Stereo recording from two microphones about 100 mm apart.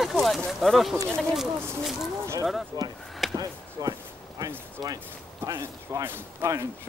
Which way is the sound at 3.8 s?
40° right (ahead or behind).